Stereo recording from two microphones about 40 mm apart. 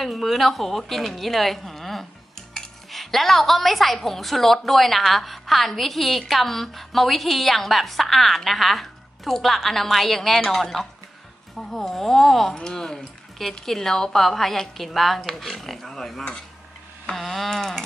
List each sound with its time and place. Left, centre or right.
0.0 s a woman's voice: centre
12.5 s a woman's voice: centre